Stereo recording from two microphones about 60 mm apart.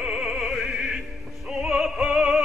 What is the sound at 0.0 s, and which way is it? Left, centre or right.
Music, centre.